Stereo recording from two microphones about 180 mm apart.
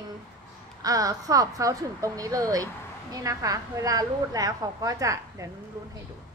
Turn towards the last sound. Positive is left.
turn(degrees=-20)  # may be behind; listen again after turning